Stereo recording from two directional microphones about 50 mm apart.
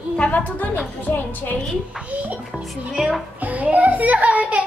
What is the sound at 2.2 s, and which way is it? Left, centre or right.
A child's voice, right.